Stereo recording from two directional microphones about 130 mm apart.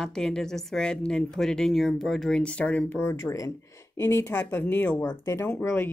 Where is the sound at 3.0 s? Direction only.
20° left (ahead or behind).